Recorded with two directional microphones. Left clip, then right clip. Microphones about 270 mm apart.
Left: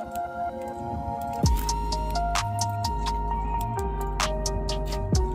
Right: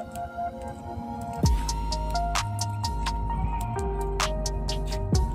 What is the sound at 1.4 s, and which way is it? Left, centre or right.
Music, centre.